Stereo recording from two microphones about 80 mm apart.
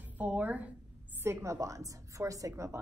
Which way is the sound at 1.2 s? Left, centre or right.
Right.